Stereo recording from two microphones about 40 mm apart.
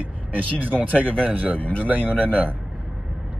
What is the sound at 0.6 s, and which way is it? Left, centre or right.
Speech, right.